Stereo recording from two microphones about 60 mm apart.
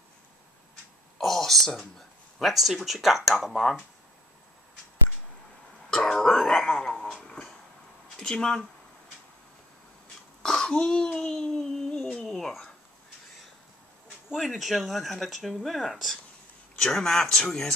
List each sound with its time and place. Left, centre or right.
1.1 s a sound: centre
2.0 s speech: centre
5.9 s a sound: centre
8.2 s speech: centre
10.4 s speech: centre
12.1 s cat: centre
14.4 s speech: centre